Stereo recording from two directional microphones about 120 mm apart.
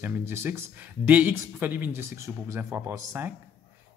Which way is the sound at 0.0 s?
20° right (ahead or behind).